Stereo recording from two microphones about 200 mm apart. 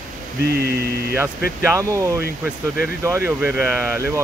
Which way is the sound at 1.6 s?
15° right (ahead or behind).